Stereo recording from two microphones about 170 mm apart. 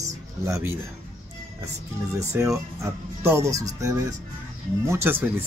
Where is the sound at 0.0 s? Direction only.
15° right (ahead or behind).